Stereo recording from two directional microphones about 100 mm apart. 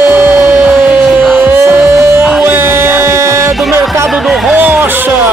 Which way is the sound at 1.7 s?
Centre (ahead or behind).